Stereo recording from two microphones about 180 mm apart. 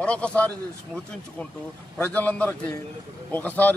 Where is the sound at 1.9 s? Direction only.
10° left (ahead or behind).